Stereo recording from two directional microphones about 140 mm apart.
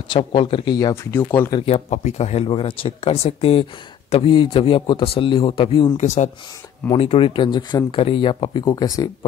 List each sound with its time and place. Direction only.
0.1 s speech: 35° left (ahead or behind)
1.1 s speech: 15° left (ahead or behind)
1.7 s speech: 55° left (ahead or behind)
2.4 s speech: 40° left (ahead or behind)
5.9 s speech: 55° left (ahead or behind)
6.9 s speech: 40° left (ahead or behind); by 9.1 s 25° left (ahead or behind)